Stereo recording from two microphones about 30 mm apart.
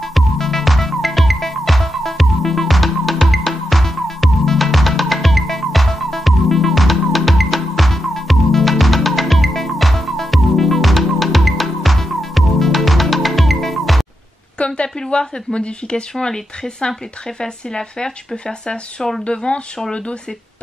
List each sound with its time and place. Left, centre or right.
0.0 s music: centre
14.6 s a woman's voice: left